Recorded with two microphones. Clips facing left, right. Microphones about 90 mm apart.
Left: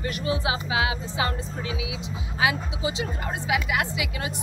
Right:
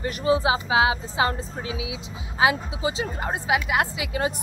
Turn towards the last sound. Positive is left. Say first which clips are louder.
# right 4 dB
turn(degrees=-35)  # may be behind; listen again after turning